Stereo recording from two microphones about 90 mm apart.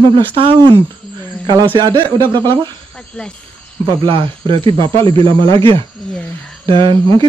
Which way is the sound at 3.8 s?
65° right (ahead or behind).